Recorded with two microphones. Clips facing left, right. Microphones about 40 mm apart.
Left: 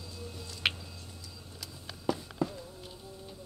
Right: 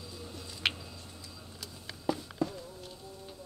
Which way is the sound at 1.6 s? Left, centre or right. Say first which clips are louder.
Even; centre.